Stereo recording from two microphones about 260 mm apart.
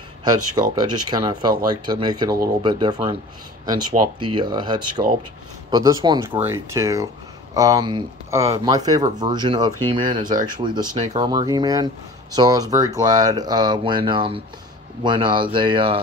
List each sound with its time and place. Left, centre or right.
0.2 s speech: centre